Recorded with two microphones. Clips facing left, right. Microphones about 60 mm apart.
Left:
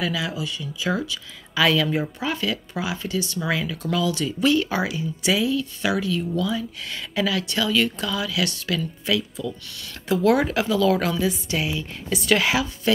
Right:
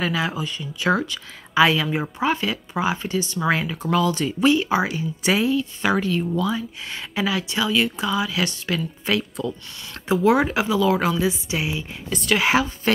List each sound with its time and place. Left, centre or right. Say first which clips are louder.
0.0 s speech: right 2 dB; right
0.7 s speech: right 5 dB; right
1.5 s speech: right 2 dB; right
4.8 s speech: right 1 dB; right; by 8.1 s centre
8.1 s speech: right 2 dB; right
10.0 s speech: right 1 dB; right
12.1 s speech: left 1 dB; centre
12.4 s speech: right 3 dB; right